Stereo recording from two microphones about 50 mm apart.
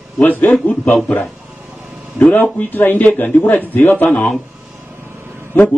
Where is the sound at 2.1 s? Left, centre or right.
Left.